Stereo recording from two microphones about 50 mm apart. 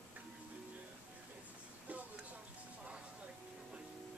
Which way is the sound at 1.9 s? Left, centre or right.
Right.